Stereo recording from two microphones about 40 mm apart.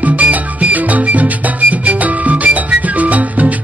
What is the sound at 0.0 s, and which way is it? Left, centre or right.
Music, right.